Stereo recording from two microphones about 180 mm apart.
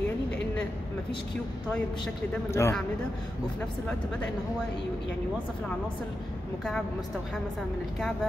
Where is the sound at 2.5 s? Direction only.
15° left (ahead or behind).